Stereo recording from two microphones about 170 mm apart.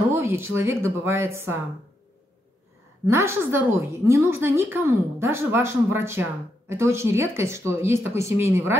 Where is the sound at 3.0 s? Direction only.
15° right (ahead or behind).